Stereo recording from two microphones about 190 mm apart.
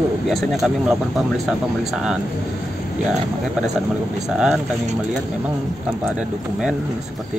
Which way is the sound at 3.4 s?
5° right (ahead or behind).